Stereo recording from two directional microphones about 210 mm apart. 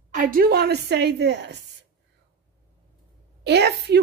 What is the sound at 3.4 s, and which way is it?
Speech, 50° right (ahead or behind).